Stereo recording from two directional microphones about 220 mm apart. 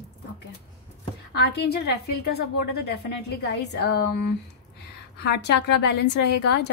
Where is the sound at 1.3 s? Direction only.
50° left (ahead or behind).